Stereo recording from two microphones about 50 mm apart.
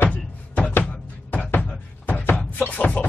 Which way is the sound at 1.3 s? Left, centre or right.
Left.